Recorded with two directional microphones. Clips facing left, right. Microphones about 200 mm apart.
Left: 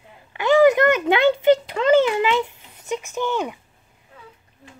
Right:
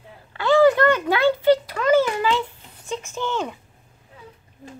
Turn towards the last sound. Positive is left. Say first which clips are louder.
# left 2 dB
turn(degrees=15)  # may be behind; listen again after turning